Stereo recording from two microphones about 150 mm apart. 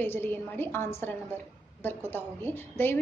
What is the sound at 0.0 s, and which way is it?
A woman's voice, 15° left (ahead or behind).